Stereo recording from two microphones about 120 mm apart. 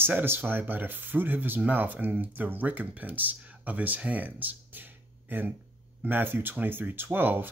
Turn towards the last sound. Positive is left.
turn(degrees=-15)  # may be behind; listen again after turning